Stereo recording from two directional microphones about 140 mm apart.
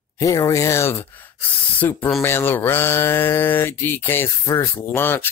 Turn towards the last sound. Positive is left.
turn(degrees=15)  # may be behind; listen again after turning